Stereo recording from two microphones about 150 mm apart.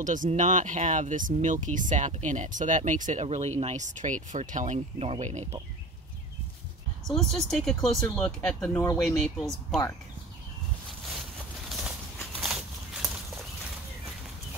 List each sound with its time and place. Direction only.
0.0 s speech: 60° right (ahead or behind)
7.1 s speech: 5° left (ahead or behind)
9.0 s speech: centre (ahead or behind)
11.7 s a sound: centre (ahead or behind)